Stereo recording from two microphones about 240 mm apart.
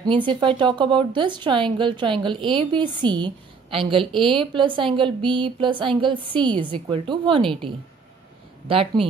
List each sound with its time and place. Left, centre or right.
0.0 s speech: centre
8.6 s speech: right